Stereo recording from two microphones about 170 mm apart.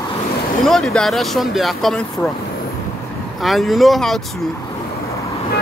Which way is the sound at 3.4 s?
Centre (ahead or behind).